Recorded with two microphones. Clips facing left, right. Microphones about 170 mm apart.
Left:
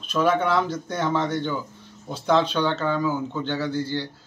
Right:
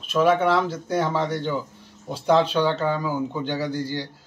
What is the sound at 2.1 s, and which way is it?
Speech, 10° right (ahead or behind).